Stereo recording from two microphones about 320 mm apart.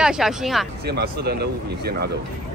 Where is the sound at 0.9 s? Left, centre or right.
Right.